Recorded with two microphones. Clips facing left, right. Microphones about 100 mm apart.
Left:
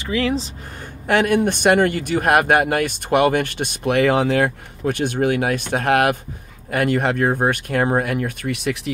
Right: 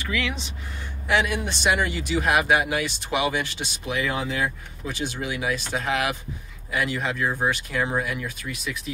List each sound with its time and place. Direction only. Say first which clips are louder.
0.0 s speech: left 8 dB; 35° left (ahead or behind)
1.0 s speech: left 7 dB; 50° left (ahead or behind); by 8.9 s 75° left (ahead or behind)